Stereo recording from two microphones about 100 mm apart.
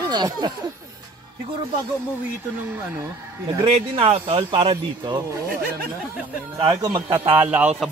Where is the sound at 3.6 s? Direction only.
70° right (ahead or behind); by 5.2 s 55° right (ahead or behind).